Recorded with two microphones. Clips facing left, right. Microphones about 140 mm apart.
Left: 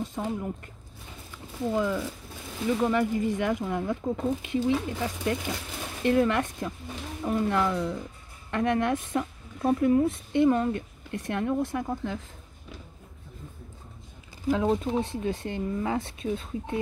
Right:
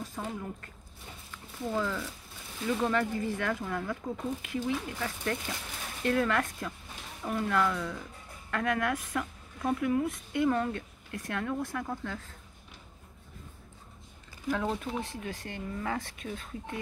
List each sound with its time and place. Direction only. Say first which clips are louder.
0.0 s speech: left 6 dB; 20° left (ahead or behind)
1.7 s speech: left 5 dB; 15° left (ahead or behind)
14.5 s speech: left 7 dB; 20° left (ahead or behind)